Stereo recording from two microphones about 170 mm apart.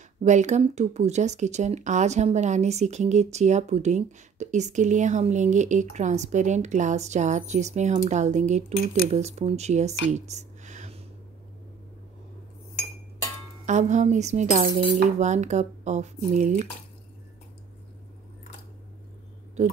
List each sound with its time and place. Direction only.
0.2 s speech: 45° right (ahead or behind)
13.7 s speech: 45° right (ahead or behind)